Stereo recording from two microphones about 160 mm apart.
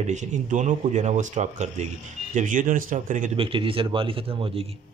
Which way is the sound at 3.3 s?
35° right (ahead or behind).